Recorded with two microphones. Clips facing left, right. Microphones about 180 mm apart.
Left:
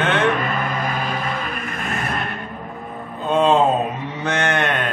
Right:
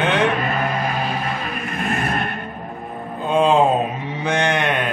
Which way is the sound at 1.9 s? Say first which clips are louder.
Right 3 dB; 50° right (ahead or behind).